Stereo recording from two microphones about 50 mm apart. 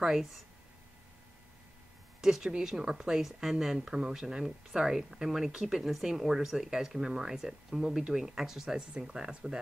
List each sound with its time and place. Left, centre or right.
0.0 s speech: centre
2.2 s speech: centre